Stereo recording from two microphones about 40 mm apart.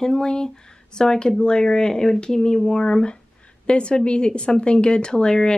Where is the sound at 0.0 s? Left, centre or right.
Centre.